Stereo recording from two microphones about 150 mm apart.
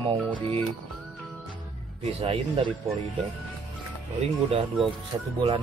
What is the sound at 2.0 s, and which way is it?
Speech, 40° right (ahead or behind).